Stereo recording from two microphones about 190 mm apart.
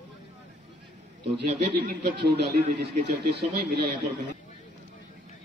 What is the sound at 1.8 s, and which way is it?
Speech, 55° right (ahead or behind).